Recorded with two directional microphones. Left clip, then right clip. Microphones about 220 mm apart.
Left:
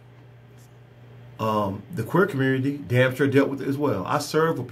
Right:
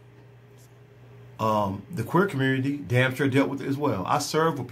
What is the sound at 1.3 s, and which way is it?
Speech, centre (ahead or behind).